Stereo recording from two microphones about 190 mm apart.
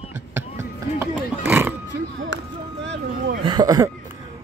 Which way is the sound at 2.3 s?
70° right (ahead or behind).